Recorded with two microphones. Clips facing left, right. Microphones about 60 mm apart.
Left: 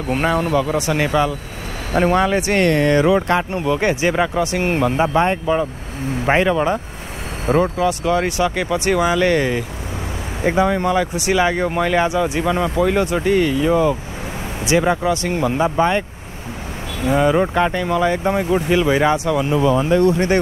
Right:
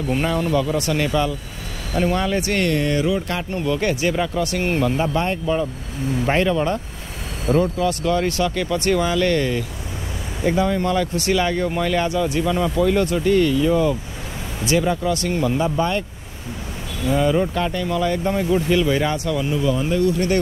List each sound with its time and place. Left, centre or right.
0.1 s speech: left
2.6 s speech: left
3.3 s speech: left
7.4 s speech: left
7.7 s speech: centre
17.0 s speech: left
19.9 s speech: left